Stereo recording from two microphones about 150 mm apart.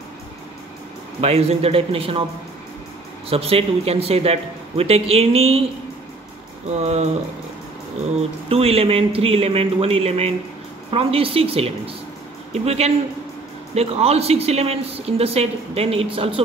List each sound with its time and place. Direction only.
1.2 s speech: 45° right (ahead or behind)
3.3 s speech: 40° right (ahead or behind)
6.7 s speech: 50° right (ahead or behind)
8.5 s speech: 40° right (ahead or behind)